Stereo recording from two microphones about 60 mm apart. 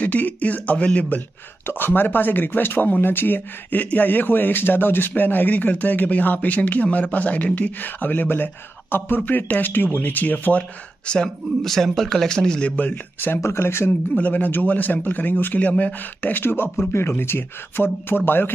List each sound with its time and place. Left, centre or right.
0.0 s a man's voice: left
1.7 s a man's voice: left
11.1 s speech: centre
12.7 s speech: left
13.4 s speech: left
14.1 s a man's voice: left